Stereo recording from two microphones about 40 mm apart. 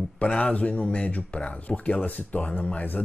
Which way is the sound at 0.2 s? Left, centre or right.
Left.